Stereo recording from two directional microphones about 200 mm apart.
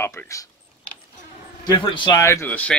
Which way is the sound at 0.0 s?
15° left (ahead or behind).